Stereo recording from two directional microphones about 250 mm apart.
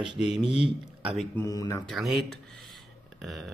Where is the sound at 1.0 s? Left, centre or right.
Centre.